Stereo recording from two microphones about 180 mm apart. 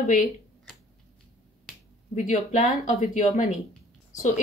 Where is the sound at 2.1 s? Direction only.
40° left (ahead or behind).